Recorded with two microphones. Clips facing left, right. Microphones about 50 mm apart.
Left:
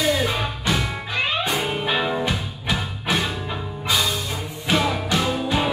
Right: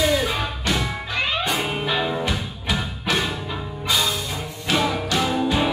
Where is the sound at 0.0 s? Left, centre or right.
Centre.